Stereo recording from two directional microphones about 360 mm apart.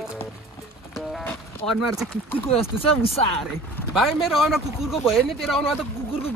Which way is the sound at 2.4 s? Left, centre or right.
Centre.